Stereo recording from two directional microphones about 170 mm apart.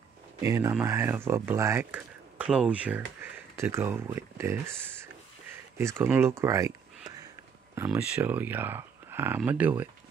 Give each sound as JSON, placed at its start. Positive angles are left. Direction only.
{"t": 0.4, "sound": "speech", "side_deg": -15}
{"t": 7.7, "sound": "speech", "side_deg": -15}